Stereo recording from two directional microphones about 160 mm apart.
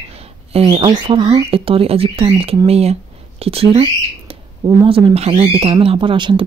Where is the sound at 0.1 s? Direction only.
40° right (ahead or behind).